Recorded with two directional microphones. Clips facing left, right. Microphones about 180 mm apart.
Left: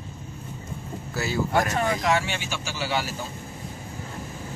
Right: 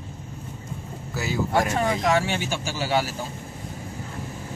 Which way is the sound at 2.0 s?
40° right (ahead or behind).